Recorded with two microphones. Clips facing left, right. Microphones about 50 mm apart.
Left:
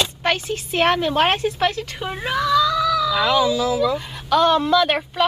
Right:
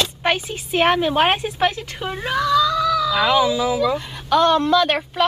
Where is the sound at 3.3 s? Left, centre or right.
Centre.